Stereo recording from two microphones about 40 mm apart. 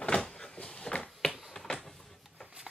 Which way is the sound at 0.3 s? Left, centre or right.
Centre.